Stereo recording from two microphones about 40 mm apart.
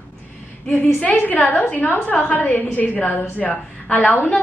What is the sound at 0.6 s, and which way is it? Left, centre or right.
A woman's voice, left.